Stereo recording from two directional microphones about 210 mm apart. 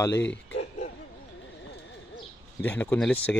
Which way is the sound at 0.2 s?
60° left (ahead or behind).